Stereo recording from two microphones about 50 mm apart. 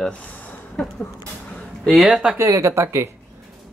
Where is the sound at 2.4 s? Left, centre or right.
Right.